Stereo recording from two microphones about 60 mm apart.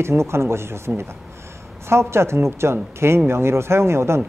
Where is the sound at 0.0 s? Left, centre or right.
Right.